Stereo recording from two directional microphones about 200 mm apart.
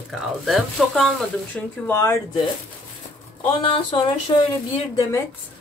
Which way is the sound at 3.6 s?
25° left (ahead or behind).